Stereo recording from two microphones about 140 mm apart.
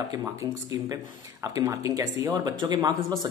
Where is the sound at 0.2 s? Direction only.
25° right (ahead or behind).